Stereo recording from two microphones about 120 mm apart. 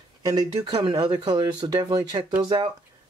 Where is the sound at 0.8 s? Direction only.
40° right (ahead or behind).